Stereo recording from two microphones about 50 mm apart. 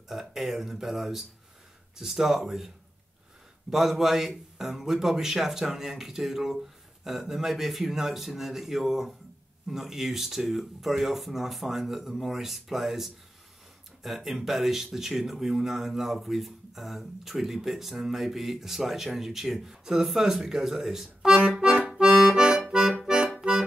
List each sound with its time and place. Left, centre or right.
0.1 s speech: centre
3.7 s speech: centre
20.1 s accordion: centre